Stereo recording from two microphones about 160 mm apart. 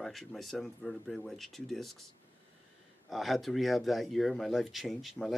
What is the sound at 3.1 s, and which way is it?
Speech, centre (ahead or behind).